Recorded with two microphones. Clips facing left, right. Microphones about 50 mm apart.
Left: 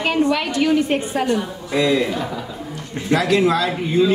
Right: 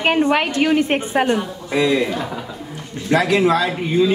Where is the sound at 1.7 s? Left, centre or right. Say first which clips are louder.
Right 1 dB; centre.